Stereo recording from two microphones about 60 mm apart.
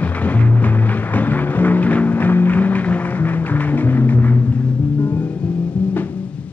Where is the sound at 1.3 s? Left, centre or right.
Left.